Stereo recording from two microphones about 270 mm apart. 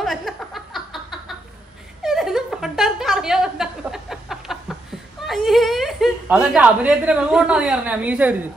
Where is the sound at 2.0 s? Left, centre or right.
Centre.